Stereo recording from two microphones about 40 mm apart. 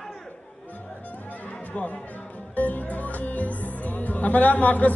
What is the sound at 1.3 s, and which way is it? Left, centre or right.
Music, left.